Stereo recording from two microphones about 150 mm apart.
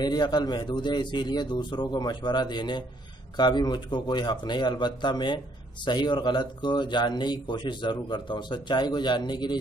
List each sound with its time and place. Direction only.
0.0 s a man's voice: 30° left (ahead or behind)